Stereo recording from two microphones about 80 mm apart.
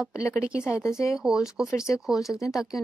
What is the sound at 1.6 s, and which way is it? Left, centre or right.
Speech, left.